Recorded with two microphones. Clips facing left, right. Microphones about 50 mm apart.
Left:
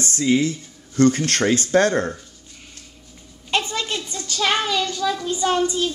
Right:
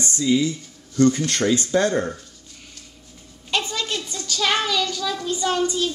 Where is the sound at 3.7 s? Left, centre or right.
Left.